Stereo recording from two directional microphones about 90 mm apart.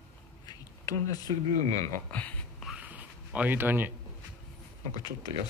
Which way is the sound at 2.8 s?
15° right (ahead or behind).